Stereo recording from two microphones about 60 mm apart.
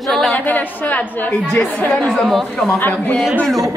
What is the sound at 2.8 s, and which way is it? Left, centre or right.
Speech, left.